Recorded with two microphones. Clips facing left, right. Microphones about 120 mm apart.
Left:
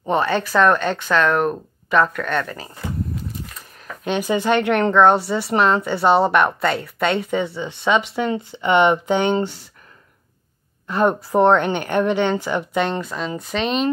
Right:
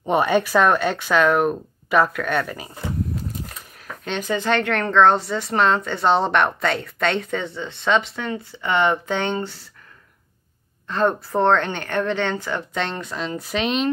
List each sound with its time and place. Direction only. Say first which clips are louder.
0.1 s speech: right 1 dB; 10° right (ahead or behind)
4.0 s speech: left 4 dB; 10° left (ahead or behind)
10.9 s speech: left 2 dB; 10° left (ahead or behind)